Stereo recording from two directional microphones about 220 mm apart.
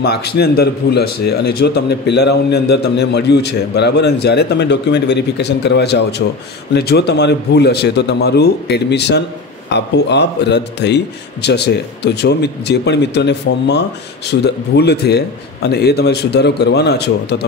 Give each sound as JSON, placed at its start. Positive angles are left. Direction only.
{"t": 0.0, "sound": "a man's voice", "side_deg": 45}